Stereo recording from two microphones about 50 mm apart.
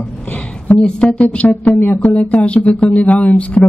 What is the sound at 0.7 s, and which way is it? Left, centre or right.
Speech, left.